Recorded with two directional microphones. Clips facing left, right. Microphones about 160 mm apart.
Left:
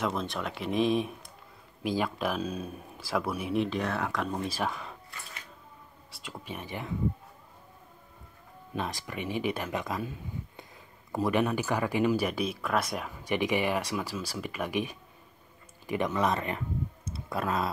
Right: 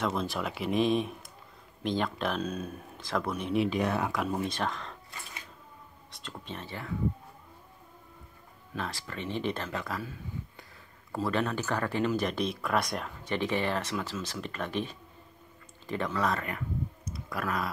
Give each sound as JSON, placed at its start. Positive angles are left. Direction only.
{"t": 0.0, "sound": "speech", "side_deg": 0}
{"t": 3.6, "sound": "speech", "side_deg": -15}
{"t": 4.6, "sound": "speech", "side_deg": 10}
{"t": 6.2, "sound": "speech", "side_deg": 10}
{"t": 8.7, "sound": "speech", "side_deg": 20}